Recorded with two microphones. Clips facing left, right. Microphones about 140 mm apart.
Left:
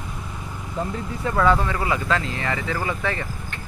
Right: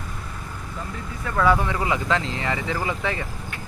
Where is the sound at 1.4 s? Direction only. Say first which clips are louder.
Even; 10° right (ahead or behind).